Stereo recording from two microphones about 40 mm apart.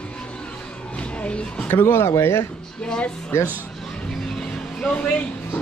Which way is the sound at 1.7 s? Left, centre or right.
Left.